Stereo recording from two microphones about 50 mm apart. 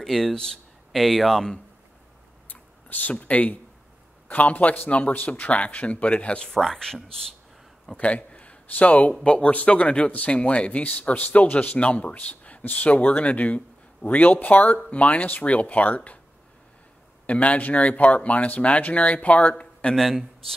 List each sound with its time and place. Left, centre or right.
0.0 s speech: centre
2.4 s a sound: left
4.3 s speech: left
6.5 s speech: centre
8.0 s a man's voice: left
17.3 s speech: left
19.5 s a man's voice: centre
20.0 s speech: centre